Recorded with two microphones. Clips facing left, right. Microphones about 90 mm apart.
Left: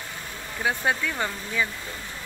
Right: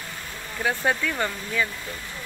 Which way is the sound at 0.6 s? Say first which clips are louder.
Right 1 dB; 10° left (ahead or behind).